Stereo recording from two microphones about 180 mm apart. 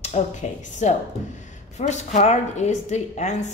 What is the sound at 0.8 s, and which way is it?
A woman's voice, 40° left (ahead or behind).